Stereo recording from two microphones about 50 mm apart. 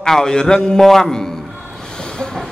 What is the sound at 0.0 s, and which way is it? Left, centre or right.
A man's voice, centre.